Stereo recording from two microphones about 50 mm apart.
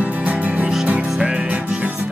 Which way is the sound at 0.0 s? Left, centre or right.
Right.